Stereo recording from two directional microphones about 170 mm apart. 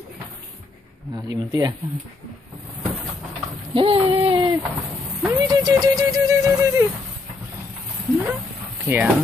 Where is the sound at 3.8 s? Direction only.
35° right (ahead or behind).